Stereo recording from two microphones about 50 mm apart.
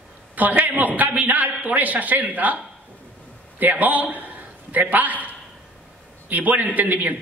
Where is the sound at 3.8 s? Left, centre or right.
Right.